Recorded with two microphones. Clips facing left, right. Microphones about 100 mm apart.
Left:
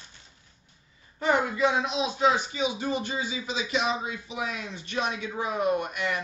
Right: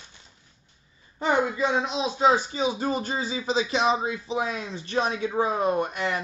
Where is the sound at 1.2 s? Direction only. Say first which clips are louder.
Right 1 dB; 25° right (ahead or behind).